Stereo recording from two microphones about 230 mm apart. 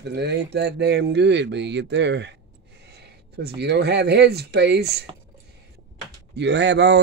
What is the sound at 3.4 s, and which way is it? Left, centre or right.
A man's voice, right.